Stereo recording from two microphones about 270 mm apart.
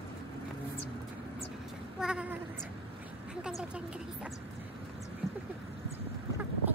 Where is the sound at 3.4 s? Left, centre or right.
Centre.